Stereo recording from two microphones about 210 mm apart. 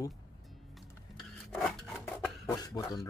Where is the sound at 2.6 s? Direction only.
20° left (ahead or behind).